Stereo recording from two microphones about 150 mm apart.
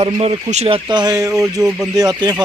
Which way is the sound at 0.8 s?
30° right (ahead or behind).